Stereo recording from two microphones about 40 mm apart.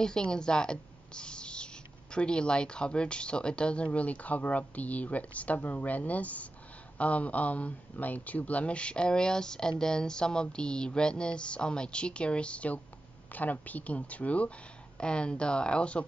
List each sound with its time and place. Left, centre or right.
0.0 s speech: centre; by 14.5 s left
15.0 s speech: left